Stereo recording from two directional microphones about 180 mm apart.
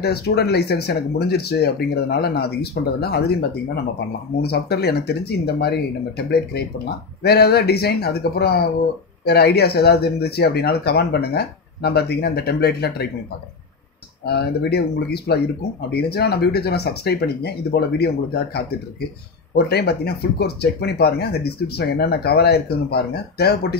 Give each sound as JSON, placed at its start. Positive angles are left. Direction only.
{"t": 0.0, "sound": "speech", "side_deg": 65}
{"t": 14.2, "sound": "speech", "side_deg": 65}